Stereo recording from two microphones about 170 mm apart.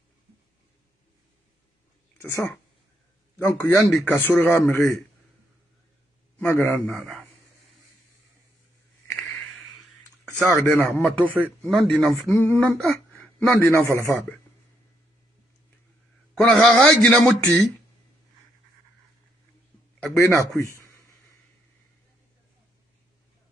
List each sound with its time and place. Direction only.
2.3 s speech: 10° left (ahead or behind)
6.3 s speech: 15° left (ahead or behind)
7.0 s a man's voice: centre (ahead or behind)
10.3 s a man's voice: 15° left (ahead or behind)
12.3 s speech: 15° left (ahead or behind)
13.7 s speech: 15° left (ahead or behind)
16.6 s a man's voice: 5° left (ahead or behind)
20.2 s speech: 15° left (ahead or behind)